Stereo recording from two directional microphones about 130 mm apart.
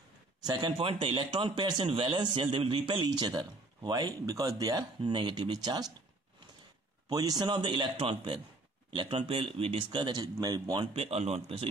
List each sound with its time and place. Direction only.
0.5 s a man's voice: 35° right (ahead or behind)
0.7 s a man's voice: 50° right (ahead or behind); by 5.9 s 30° right (ahead or behind)
7.1 s a man's voice: 30° right (ahead or behind)
10.9 s speech: 50° right (ahead or behind)